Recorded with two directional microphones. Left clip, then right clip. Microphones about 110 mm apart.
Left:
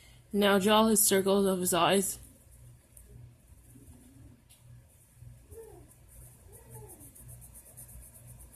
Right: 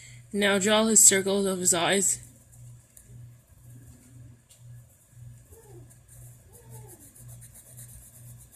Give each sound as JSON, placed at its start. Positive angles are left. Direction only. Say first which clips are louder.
{"t": 0.3, "sound": "speech", "louder": "right 2 dB", "side_deg": 5}